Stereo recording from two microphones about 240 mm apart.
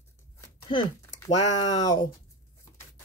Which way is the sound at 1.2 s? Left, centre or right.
Centre.